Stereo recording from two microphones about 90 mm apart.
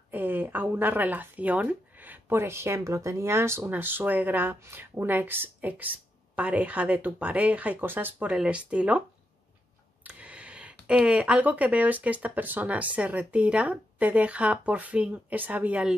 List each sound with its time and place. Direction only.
0.1 s speech: 20° right (ahead or behind)
8.3 s speech: 10° right (ahead or behind)
10.0 s speech: 15° right (ahead or behind)